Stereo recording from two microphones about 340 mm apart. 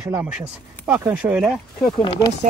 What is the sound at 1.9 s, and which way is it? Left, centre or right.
Speech, centre.